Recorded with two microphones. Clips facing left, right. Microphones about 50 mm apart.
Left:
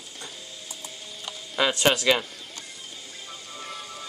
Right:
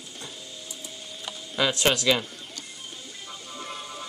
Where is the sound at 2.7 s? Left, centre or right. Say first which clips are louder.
Even; right.